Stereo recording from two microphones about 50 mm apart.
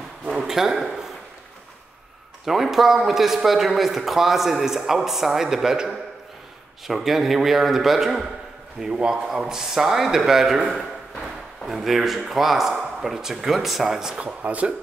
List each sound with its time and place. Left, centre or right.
0.3 s a sound: centre
2.4 s a man's voice: centre
14.4 s speech: right